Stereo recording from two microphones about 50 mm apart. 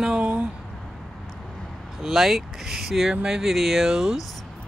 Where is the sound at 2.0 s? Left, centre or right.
Centre.